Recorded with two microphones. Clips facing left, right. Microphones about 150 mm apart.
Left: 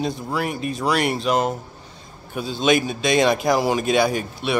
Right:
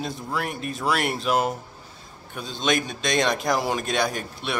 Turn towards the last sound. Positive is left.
turn(degrees=5)  # may be behind; listen again after turning